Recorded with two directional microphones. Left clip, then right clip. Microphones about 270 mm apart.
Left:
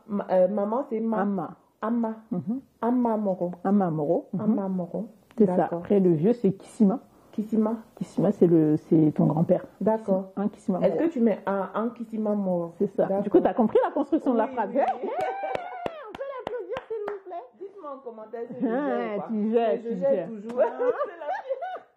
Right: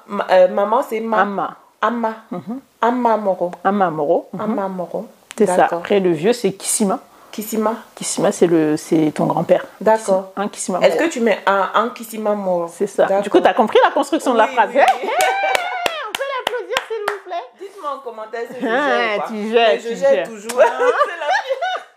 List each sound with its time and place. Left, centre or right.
0.1 s a woman's voice: centre
9.2 s speech: right
9.5 s a woman's voice: centre